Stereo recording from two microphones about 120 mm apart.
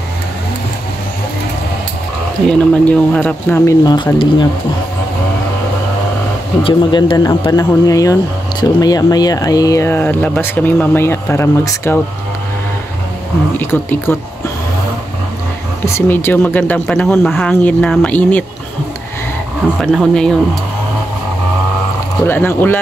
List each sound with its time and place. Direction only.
2.4 s speech: 10° left (ahead or behind)
3.6 s speech: 35° left (ahead or behind)
6.6 s speech: 45° left (ahead or behind); by 12.0 s 20° left (ahead or behind)
13.6 s speech: 20° left (ahead or behind)
15.8 s speech: 20° left (ahead or behind)
19.6 s speech: 10° left (ahead or behind)
22.2 s speech: 15° left (ahead or behind)